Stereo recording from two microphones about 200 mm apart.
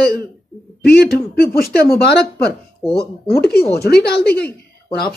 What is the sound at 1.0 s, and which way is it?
A woman's voice, 50° left (ahead or behind).